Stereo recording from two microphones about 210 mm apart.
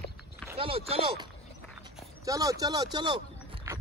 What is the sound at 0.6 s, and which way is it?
Speech, 25° right (ahead or behind).